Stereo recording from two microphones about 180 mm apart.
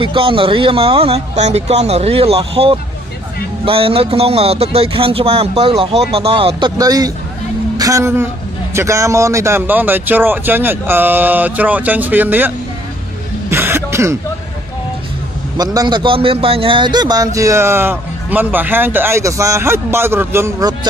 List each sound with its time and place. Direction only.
0.0 s a woman's voice: 30° right (ahead or behind); by 12.5 s 10° right (ahead or behind)
13.5 s throat clearing: 10° right (ahead or behind)
15.5 s a man's voice: 20° right (ahead or behind)